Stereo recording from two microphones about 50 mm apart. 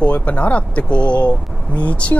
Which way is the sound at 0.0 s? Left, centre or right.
Left.